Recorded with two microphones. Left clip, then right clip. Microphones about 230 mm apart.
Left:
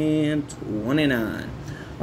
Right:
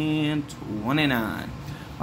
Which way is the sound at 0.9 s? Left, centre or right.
Centre.